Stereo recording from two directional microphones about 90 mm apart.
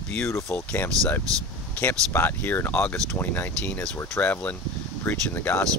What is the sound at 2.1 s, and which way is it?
Speech, 25° left (ahead or behind).